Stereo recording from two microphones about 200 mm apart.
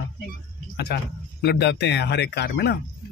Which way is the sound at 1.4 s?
55° left (ahead or behind).